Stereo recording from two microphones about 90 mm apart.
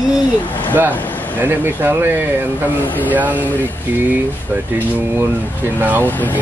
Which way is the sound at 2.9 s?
20° left (ahead or behind).